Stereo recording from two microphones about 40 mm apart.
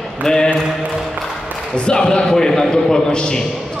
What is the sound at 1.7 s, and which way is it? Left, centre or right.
A man's voice, left.